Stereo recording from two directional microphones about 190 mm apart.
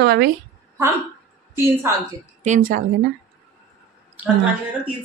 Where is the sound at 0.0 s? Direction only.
55° right (ahead or behind).